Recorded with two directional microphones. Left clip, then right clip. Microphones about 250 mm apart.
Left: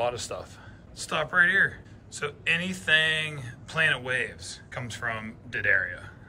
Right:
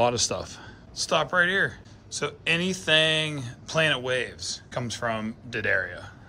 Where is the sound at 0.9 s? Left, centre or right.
Centre.